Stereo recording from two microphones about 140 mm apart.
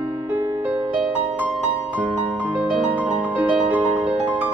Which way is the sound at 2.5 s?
10° right (ahead or behind).